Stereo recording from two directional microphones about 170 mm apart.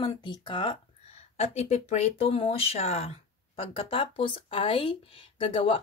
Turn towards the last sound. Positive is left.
turn(degrees=35)  # may be behind; listen again after turning